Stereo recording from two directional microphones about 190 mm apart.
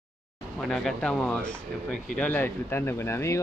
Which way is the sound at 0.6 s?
Centre (ahead or behind).